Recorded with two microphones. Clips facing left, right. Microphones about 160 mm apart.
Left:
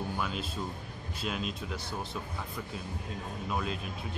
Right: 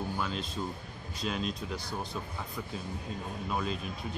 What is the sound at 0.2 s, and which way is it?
Speech, 5° left (ahead or behind).